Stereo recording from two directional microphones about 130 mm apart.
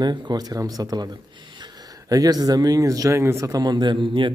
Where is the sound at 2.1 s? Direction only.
30° right (ahead or behind).